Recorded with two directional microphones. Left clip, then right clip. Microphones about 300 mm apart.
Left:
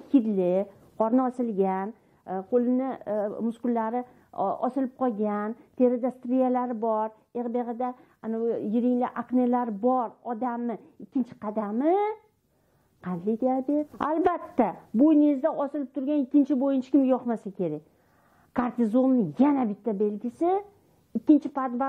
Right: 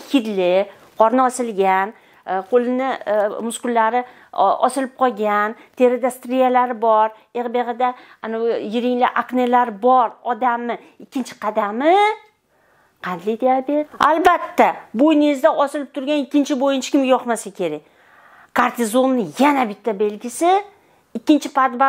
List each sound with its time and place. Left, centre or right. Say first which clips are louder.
0.0 s a woman's voice: right 6 dB; centre